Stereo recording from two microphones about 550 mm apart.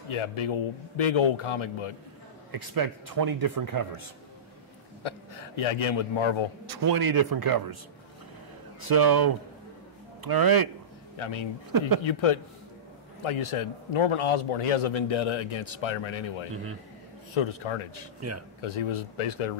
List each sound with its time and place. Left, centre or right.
0.1 s a man's voice: left
2.5 s speech: right
5.0 s a sound: left
5.6 s a man's voice: left
6.6 s speech: right
8.8 s speech: right
11.1 s a man's voice: left
17.3 s a man's voice: left